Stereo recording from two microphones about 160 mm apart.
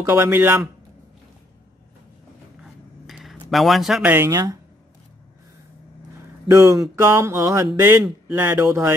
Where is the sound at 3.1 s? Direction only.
Centre (ahead or behind); by 4.6 s 20° right (ahead or behind).